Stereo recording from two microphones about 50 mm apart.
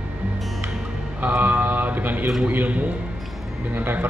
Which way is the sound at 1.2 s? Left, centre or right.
Right.